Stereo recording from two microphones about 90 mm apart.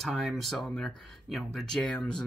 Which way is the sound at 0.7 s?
15° left (ahead or behind).